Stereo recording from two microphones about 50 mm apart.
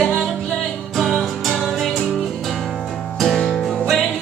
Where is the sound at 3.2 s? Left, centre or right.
Centre.